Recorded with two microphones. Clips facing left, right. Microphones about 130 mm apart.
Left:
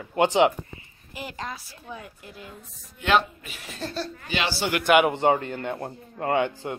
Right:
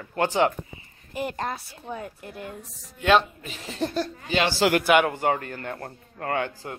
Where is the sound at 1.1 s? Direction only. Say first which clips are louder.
Right 6 dB; 55° right (ahead or behind).